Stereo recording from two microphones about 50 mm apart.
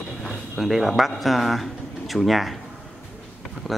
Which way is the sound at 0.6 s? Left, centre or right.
Centre.